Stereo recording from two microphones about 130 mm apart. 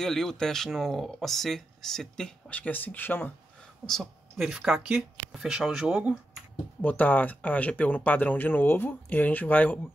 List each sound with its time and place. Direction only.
0.0 s speech: 5° left (ahead or behind)
3.8 s speech: 5° left (ahead or behind)
6.8 s speech: 15° left (ahead or behind)